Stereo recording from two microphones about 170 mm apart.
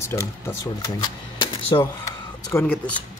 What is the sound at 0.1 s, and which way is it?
Speech, 20° left (ahead or behind).